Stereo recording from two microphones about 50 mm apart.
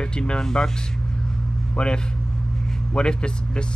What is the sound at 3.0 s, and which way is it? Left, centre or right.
Speech, centre.